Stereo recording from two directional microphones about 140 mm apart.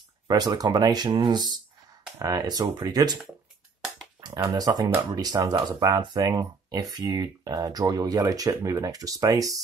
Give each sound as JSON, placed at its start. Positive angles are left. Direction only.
{"t": 0.3, "sound": "speech", "side_deg": -30}
{"t": 4.2, "sound": "speech", "side_deg": -25}